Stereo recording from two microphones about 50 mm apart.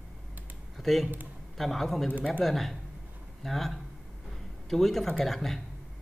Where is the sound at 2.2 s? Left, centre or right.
Left.